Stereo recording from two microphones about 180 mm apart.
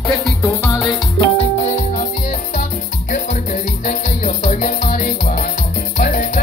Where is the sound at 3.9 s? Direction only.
45° left (ahead or behind).